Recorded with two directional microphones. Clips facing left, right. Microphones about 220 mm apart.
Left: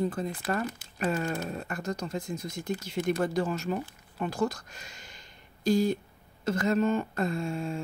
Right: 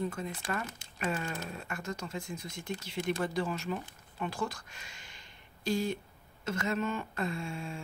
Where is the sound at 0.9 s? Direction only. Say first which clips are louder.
Left 5 dB; 40° left (ahead or behind).